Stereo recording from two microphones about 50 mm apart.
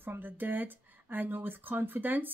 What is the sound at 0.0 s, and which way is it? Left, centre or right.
Speech, right.